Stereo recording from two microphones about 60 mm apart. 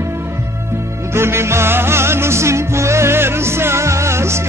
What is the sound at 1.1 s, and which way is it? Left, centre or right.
Music, right.